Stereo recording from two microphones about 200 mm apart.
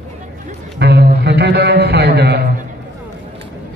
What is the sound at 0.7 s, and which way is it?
A man's voice, 55° right (ahead or behind).